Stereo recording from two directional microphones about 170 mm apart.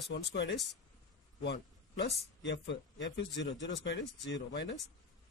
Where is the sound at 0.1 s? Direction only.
85° left.